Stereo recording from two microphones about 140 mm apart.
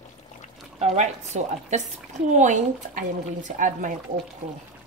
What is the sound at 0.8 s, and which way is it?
A woman's voice, 55° right (ahead or behind).